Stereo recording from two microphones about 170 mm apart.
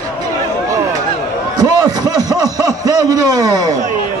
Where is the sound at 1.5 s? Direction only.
20° right (ahead or behind).